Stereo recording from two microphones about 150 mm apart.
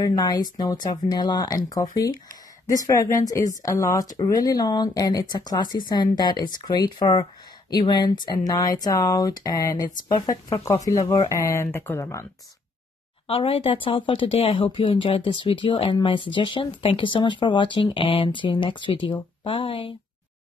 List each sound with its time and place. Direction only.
0.0 s speech: 25° left (ahead or behind)
13.3 s speech: 35° left (ahead or behind)